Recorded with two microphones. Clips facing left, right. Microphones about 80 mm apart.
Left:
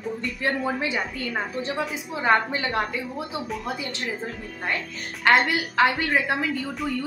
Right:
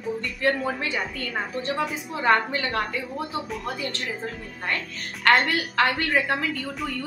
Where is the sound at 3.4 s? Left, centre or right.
Centre.